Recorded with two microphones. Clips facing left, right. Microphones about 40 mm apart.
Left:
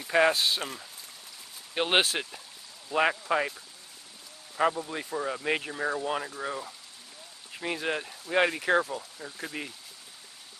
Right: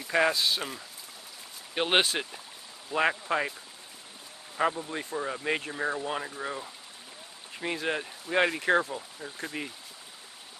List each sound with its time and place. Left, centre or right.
0.0 s a sound: centre
0.6 s speech: centre
4.6 s speech: centre